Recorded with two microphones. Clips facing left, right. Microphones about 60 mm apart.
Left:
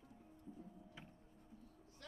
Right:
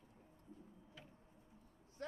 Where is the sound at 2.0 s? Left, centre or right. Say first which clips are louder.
Right 11 dB; right.